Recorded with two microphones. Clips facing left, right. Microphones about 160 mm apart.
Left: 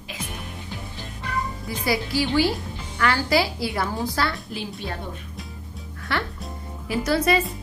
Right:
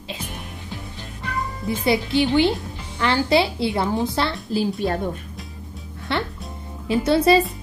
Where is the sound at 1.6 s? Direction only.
25° right (ahead or behind).